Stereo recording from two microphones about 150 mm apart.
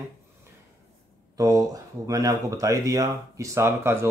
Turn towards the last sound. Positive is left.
turn(degrees=-15)  # may be behind; listen again after turning